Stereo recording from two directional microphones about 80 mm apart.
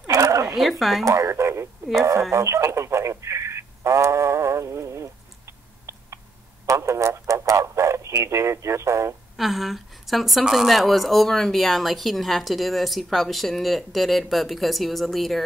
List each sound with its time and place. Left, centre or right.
0.0 s dog: right
0.6 s speech: centre
1.0 s radio: right
2.0 s speech: right
2.3 s radio: right
6.6 s a sound: right
9.4 s speech: centre